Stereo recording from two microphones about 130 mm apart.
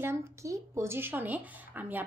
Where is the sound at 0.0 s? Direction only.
20° right (ahead or behind).